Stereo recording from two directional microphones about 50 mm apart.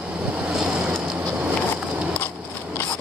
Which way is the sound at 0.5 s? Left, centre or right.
Centre.